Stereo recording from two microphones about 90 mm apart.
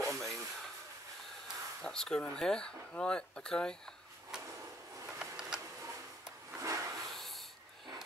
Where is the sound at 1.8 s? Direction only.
10° left (ahead or behind).